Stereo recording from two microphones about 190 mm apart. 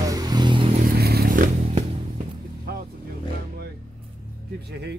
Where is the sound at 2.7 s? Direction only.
55° right (ahead or behind).